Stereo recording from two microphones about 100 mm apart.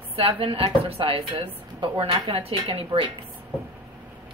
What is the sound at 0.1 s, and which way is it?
A woman's voice, 65° right (ahead or behind).